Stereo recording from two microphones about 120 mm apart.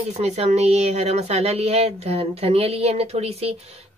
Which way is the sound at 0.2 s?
65° right (ahead or behind).